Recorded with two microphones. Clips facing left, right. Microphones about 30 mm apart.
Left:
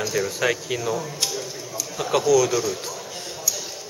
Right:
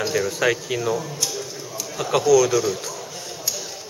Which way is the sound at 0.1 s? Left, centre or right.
Centre.